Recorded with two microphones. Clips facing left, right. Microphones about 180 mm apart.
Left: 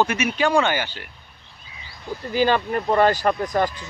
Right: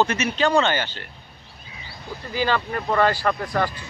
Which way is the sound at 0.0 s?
10° left (ahead or behind).